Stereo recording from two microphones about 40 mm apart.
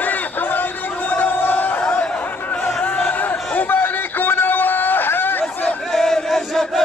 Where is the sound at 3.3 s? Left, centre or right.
Left.